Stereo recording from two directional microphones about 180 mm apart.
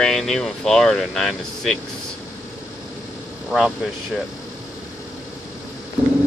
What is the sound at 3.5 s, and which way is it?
Speech, centre (ahead or behind).